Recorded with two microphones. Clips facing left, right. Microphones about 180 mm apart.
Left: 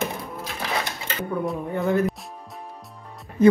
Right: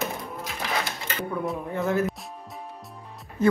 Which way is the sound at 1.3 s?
Centre (ahead or behind).